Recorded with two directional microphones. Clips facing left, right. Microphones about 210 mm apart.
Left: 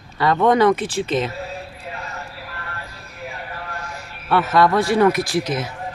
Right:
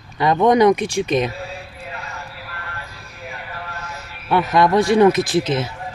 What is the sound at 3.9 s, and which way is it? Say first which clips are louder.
A man's voice: right 1 dB; 15° right (ahead or behind).